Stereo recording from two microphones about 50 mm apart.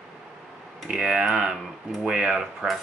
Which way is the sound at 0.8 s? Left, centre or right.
Centre.